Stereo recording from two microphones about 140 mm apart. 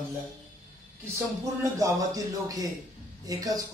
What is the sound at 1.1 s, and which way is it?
A man's voice, 25° right (ahead or behind).